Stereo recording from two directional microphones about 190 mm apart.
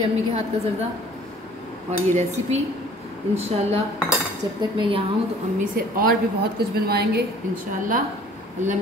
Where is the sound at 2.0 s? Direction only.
35° right (ahead or behind).